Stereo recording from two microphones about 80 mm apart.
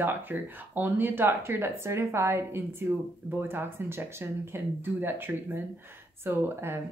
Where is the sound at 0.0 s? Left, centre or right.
Right.